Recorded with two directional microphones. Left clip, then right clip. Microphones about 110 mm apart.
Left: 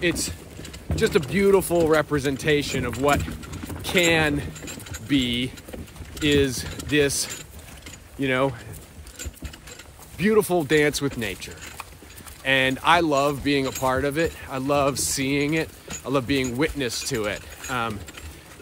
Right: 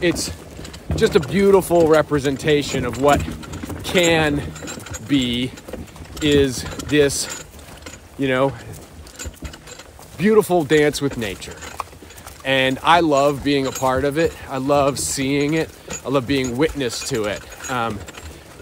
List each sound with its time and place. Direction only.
0.0 s speech: 20° right (ahead or behind)
4.6 s a sound: 85° right
5.1 s speech: 15° right (ahead or behind)
10.1 s speech: 15° right (ahead or behind)
11.6 s a sound: 75° right (ahead or behind)
12.4 s speech: 10° right (ahead or behind)